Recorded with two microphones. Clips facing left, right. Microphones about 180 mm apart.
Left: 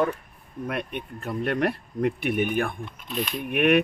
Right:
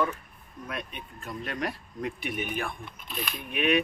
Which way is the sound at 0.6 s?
65° left (ahead or behind).